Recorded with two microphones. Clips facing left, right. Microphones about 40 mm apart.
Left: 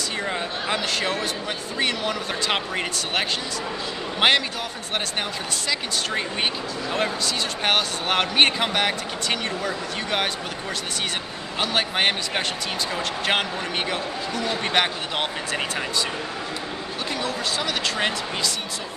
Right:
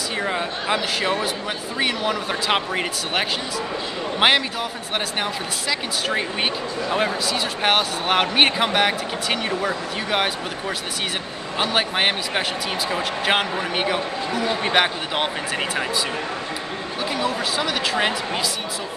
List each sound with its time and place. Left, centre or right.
0.2 s a man's voice: centre
5.7 s a man's voice: centre
7.6 s a man's voice: centre
11.6 s a man's voice: centre
17.2 s a man's voice: centre